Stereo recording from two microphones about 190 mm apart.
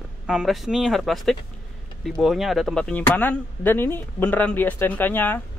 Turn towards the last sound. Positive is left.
turn(degrees=10)  # may be behind; listen again after turning